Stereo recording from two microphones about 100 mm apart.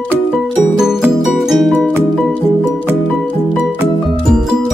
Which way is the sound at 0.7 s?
5° right (ahead or behind).